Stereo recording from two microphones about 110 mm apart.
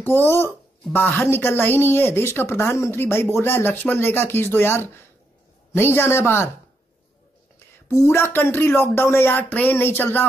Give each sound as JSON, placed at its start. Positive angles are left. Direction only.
{"t": 0.0, "sound": "a woman's voice", "side_deg": 20}
{"t": 7.5, "sound": "a woman's voice", "side_deg": 25}